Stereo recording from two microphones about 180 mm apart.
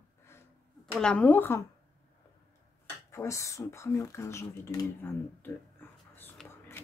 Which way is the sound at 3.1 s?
15° left (ahead or behind).